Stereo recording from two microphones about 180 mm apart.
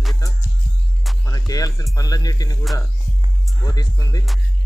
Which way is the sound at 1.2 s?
20° left (ahead or behind).